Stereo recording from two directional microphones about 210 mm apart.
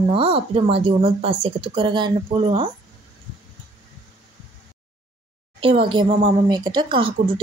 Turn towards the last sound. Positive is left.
turn(degrees=-25)  # may be behind; listen again after turning